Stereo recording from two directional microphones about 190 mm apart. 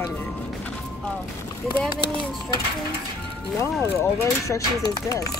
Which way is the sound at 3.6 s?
15° left (ahead or behind).